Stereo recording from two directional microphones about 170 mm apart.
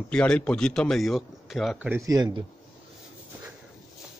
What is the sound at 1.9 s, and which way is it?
Speech, 20° right (ahead or behind).